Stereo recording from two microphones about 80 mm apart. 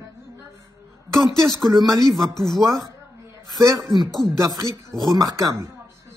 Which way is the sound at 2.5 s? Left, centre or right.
Right.